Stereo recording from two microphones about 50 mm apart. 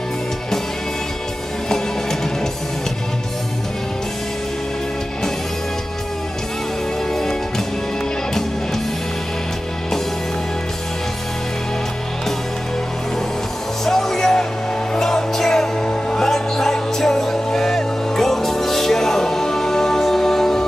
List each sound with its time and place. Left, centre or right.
7.2 s music: centre
13.8 s music: centre